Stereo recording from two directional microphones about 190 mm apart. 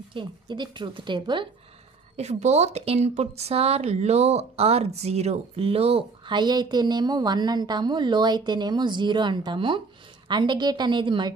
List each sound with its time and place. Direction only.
0.1 s speech: 25° right (ahead or behind)
2.1 s speech: 35° right (ahead or behind)